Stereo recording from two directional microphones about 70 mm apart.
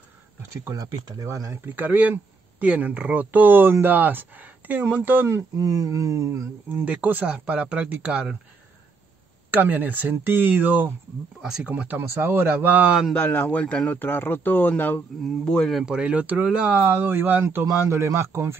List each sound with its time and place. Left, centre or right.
0.7 s speech: right
1.2 s speech: right
1.7 s speech: right
5.6 s speech: right
6.7 s speech: right
9.5 s speech: right
11.4 s speech: centre
11.7 s speech: right
12.0 s speech: right
13.2 s speech: left
15.4 s speech: centre
15.8 s speech: centre; by 17.6 s right
17.6 s speech: right